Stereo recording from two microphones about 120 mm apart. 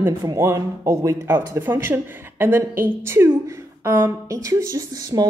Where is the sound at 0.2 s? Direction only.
30° right (ahead or behind).